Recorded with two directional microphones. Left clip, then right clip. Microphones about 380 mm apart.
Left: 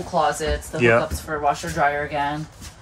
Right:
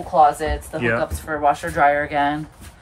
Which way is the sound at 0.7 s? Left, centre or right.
Centre.